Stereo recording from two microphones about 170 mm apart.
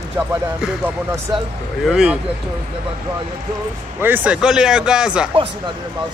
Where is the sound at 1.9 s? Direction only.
5° right (ahead or behind).